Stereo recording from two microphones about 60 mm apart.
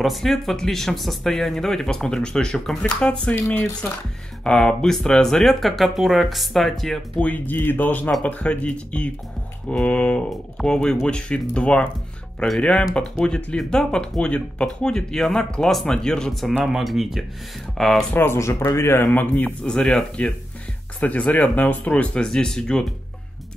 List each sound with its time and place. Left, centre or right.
0.0 s speech: centre
2.8 s speech: centre
4.5 s speech: centre
7.2 s speech: left
16.6 s speech: centre
18.1 s speech: left
19.1 s speech: left
19.6 s speech: centre
21.0 s speech: left